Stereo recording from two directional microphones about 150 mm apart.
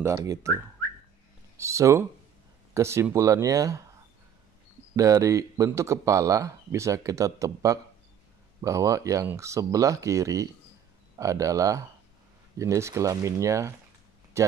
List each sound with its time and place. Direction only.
0.0 s speech: 20° right (ahead or behind)
4.9 s speech: 20° right (ahead or behind)